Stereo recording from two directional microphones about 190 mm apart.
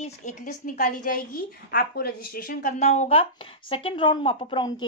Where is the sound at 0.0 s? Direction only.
40° left (ahead or behind).